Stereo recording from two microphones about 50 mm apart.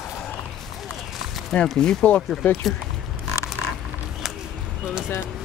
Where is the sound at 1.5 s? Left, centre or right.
Centre.